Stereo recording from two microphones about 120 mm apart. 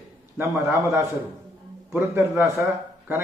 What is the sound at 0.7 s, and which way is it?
A man's voice, 25° right (ahead or behind).